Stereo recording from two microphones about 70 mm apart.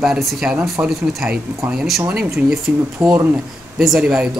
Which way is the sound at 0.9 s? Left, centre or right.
Centre.